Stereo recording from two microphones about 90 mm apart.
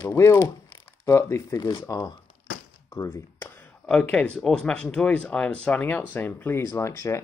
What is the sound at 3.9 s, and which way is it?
Speech, 10° left (ahead or behind).